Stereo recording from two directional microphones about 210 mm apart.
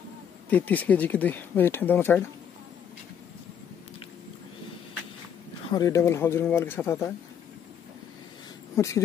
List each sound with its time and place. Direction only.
0.5 s speech: 5° left (ahead or behind)
5.7 s speech: 15° left (ahead or behind)
8.7 s speech: 15° left (ahead or behind)